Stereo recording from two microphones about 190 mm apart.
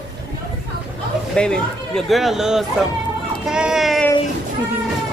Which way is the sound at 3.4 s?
5° right (ahead or behind).